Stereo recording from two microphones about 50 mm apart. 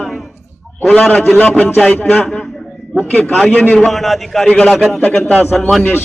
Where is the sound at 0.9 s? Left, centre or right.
Left.